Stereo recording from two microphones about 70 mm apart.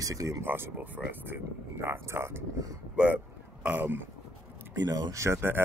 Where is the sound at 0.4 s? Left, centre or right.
Right.